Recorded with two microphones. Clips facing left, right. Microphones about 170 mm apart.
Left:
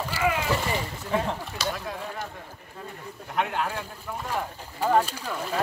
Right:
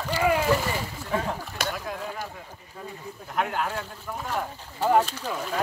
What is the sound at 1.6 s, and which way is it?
Speech, 55° right (ahead or behind).